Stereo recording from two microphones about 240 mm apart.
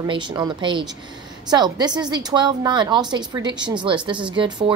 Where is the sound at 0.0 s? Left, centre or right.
Centre.